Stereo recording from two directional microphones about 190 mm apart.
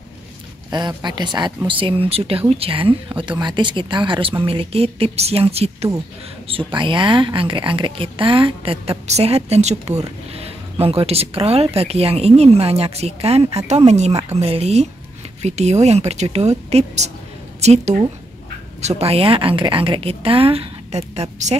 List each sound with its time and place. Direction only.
0.7 s a woman's voice: 20° right (ahead or behind)